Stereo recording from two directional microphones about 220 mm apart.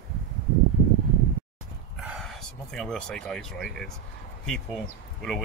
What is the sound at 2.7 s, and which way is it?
Speech, centre (ahead or behind).